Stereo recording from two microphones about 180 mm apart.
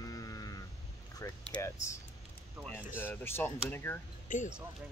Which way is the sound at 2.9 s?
10° left (ahead or behind).